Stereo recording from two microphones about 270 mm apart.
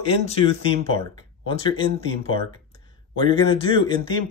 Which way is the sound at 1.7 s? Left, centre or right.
Centre.